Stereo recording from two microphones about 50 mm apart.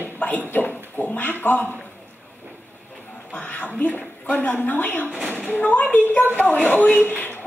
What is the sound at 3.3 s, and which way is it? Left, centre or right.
A woman's voice, left.